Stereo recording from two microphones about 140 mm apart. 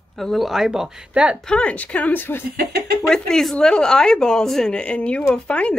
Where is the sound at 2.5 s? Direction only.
90° right.